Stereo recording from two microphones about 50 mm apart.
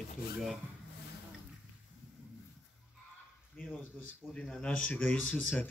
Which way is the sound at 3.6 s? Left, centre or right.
Left.